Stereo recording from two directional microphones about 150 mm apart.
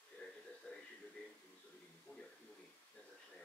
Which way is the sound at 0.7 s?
5° left (ahead or behind).